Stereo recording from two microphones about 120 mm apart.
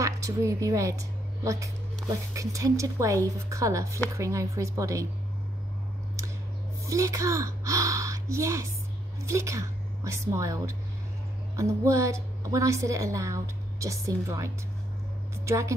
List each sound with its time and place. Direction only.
0.0 s a woman's voice: 25° right (ahead or behind)
6.9 s a woman's voice: 25° right (ahead or behind)